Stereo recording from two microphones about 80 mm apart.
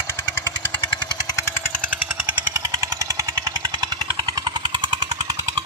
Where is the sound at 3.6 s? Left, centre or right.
Right.